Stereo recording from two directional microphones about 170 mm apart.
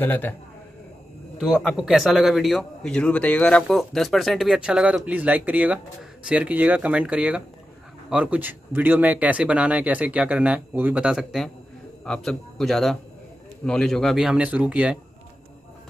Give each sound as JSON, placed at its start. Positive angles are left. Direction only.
{"t": 0.0, "sound": "a man's voice", "side_deg": 10}
{"t": 1.4, "sound": "a man's voice", "side_deg": 0}